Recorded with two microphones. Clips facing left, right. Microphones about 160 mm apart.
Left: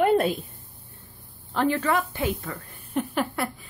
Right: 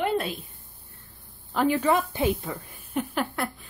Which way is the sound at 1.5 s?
5° right (ahead or behind).